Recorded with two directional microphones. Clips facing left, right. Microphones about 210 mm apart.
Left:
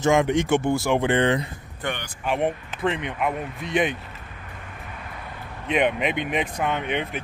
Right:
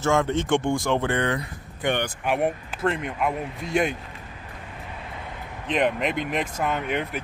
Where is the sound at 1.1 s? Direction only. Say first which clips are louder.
Left 4 dB; 20° left (ahead or behind).